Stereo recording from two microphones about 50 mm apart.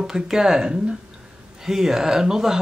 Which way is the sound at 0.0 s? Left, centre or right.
Centre.